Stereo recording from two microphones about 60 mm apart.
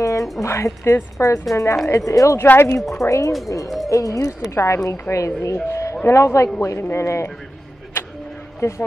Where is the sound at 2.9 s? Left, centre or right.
Left.